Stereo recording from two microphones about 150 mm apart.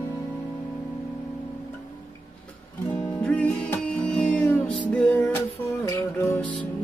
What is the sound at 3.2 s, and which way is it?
Music, 10° left (ahead or behind).